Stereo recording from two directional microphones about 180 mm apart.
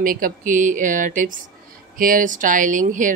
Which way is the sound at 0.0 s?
50° right (ahead or behind).